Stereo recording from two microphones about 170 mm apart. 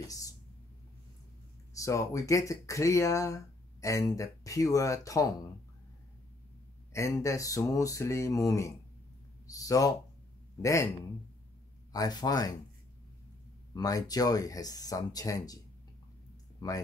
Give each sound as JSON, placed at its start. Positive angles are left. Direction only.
{"t": 1.8, "sound": "speech", "side_deg": 20}
{"t": 6.9, "sound": "speech", "side_deg": 15}
{"t": 11.9, "sound": "speech", "side_deg": 25}
{"t": 13.7, "sound": "speech", "side_deg": 20}